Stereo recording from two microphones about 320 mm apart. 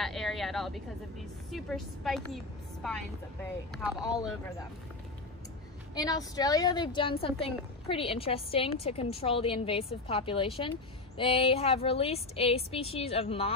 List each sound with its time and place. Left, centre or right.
0.0 s a sound: centre
1.5 s a woman's voice: centre
5.9 s a woman's voice: centre